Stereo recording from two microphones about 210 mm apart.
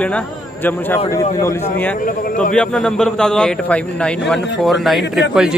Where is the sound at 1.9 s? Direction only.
40° left (ahead or behind).